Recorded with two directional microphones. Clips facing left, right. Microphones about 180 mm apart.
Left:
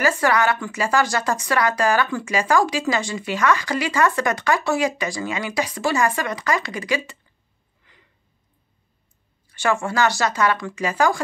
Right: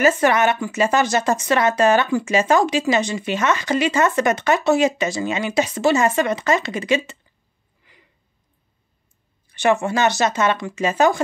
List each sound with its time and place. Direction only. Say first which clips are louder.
0.0 s speech: right 3 dB; 20° right (ahead or behind)
7.8 s a sound: right 2 dB; 10° right (ahead or behind)
9.5 s speech: right 4 dB; 20° right (ahead or behind)